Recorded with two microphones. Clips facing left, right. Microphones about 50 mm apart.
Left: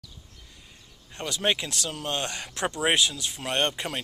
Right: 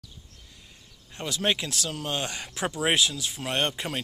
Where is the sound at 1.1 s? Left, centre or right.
Centre.